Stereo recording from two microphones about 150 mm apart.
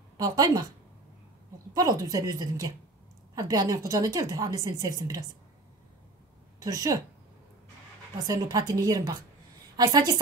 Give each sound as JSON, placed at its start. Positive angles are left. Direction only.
{"t": 0.2, "sound": "a woman's voice", "side_deg": -25}
{"t": 1.7, "sound": "a woman's voice", "side_deg": -25}
{"t": 6.6, "sound": "a woman's voice", "side_deg": -20}
{"t": 8.3, "sound": "a woman's voice", "side_deg": -25}